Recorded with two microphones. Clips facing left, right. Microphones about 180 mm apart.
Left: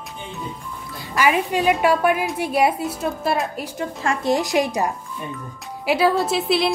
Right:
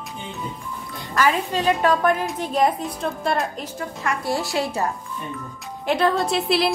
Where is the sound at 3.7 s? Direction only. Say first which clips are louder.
Left 4 dB; 20° left (ahead or behind); by 6.7 s centre (ahead or behind).